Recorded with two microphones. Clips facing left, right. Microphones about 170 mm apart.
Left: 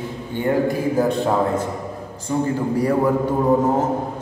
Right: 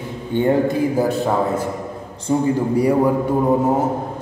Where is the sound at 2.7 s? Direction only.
15° right (ahead or behind).